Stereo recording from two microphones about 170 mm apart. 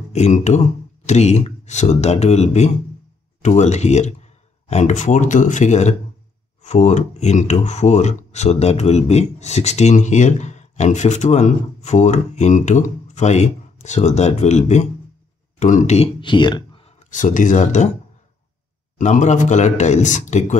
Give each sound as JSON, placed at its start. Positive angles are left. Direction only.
{"t": 0.1, "sound": "speech", "side_deg": 40}
{"t": 18.9, "sound": "speech", "side_deg": 45}